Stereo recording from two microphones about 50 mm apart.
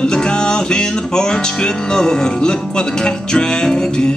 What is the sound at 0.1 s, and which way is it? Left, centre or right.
Music, centre.